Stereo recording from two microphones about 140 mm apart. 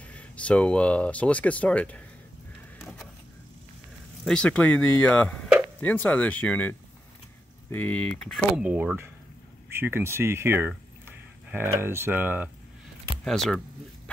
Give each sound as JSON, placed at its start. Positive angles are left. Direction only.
{"t": 0.0, "sound": "speech", "side_deg": 10}
{"t": 4.2, "sound": "speech", "side_deg": 5}
{"t": 13.2, "sound": "speech", "side_deg": 5}